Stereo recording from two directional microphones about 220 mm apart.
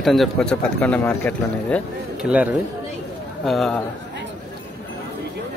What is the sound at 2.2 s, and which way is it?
Speech, 5° right (ahead or behind).